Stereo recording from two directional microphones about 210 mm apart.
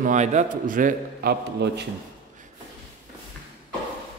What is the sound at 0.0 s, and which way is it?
A man's voice, 35° right (ahead or behind).